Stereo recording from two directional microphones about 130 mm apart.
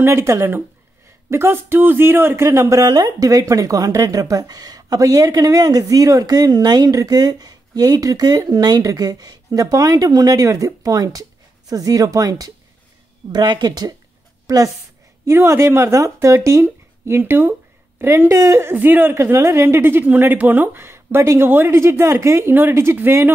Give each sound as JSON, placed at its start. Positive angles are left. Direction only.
{"t": 0.0, "sound": "speech", "side_deg": -20}